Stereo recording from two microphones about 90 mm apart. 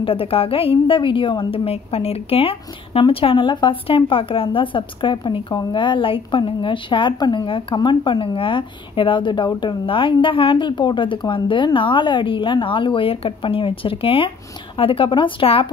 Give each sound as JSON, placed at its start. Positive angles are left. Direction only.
{"t": 0.0, "sound": "a woman's voice", "side_deg": 90}
{"t": 7.4, "sound": "a woman's voice", "side_deg": 70}